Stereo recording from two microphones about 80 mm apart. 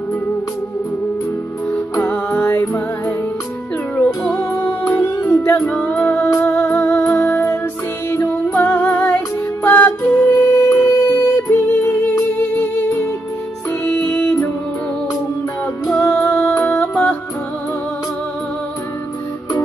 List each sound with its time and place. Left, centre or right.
1.7 s music: left
2.5 s music: left
3.9 s music: centre
4.4 s music: left
4.6 s music: left
10.7 s music: left; by 14.5 s centre
16.0 s music: left